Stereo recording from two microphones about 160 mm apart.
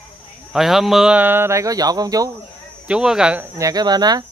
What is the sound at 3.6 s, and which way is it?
Speech, 20° right (ahead or behind).